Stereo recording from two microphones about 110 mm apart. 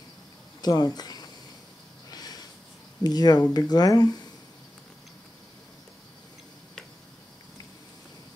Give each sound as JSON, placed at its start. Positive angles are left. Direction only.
{"t": 0.6, "sound": "speech", "side_deg": 40}
{"t": 2.0, "sound": "a sound", "side_deg": 35}
{"t": 3.0, "sound": "speech", "side_deg": 40}